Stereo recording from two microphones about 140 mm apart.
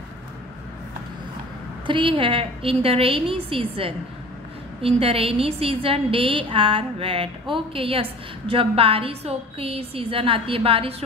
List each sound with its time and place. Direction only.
1.9 s a woman's voice: 35° right (ahead or behind)